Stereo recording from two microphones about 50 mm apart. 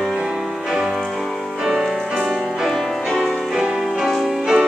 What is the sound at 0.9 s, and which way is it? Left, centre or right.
Music, centre.